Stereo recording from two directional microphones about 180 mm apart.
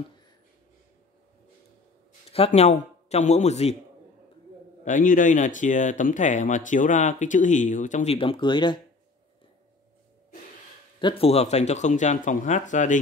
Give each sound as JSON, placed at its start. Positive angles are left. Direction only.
{"t": 2.3, "sound": "speech", "side_deg": 35}
{"t": 4.8, "sound": "speech", "side_deg": 45}
{"t": 11.0, "sound": "speech", "side_deg": 30}